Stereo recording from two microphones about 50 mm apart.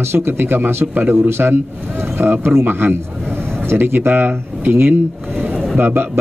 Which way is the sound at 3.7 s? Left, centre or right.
Right.